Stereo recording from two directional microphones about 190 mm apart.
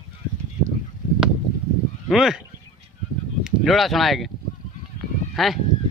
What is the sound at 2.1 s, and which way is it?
Speech, centre (ahead or behind).